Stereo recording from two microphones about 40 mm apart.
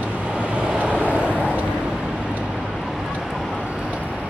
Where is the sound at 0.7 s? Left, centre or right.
Right.